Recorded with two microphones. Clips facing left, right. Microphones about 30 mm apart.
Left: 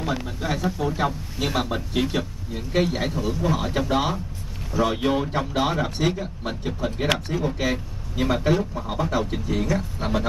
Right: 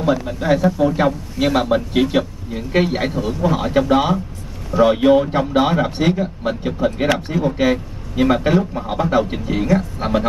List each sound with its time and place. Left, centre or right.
0.3 s speech: right